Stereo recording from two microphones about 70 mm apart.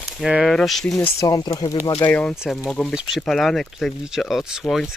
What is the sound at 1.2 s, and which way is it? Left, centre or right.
Speech, left.